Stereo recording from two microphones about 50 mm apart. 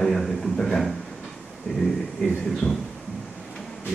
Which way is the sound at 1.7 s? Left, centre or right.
Centre.